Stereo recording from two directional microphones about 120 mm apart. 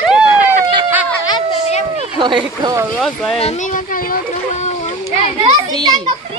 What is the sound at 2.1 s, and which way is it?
Speech, 40° right (ahead or behind).